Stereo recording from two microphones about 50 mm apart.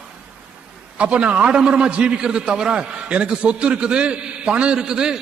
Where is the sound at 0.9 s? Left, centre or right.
Right.